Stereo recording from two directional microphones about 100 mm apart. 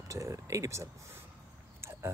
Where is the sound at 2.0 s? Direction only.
25° right (ahead or behind).